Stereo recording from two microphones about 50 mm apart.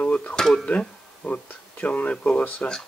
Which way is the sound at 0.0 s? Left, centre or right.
Left.